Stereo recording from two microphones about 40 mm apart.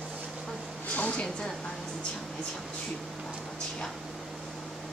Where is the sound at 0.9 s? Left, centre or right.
Left.